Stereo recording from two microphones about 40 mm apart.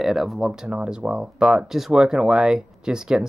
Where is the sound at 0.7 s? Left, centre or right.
Right.